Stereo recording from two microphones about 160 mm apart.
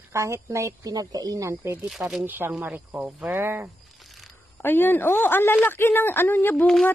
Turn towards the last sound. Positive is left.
turn(degrees=5)  # may be behind; listen again after turning